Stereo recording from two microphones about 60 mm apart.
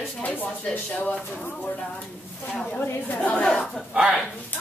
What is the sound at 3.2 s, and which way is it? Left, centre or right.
Speech, left.